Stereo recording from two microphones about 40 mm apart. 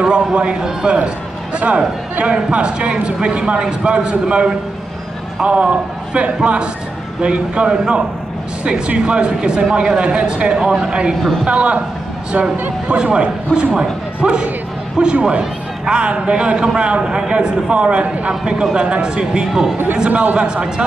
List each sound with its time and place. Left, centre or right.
0.0 s a man's voice: right
9.7 s a man's voice: centre
9.9 s a man's voice: right
12.8 s a man's voice: right
18.4 s a man's voice: centre
20.1 s speech: right
20.3 s a man's voice: right